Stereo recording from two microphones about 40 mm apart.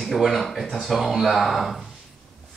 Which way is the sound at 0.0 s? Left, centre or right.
Centre.